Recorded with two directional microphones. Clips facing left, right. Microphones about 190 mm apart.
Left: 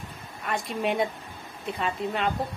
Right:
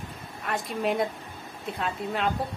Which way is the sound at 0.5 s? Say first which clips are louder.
Even; centre (ahead or behind).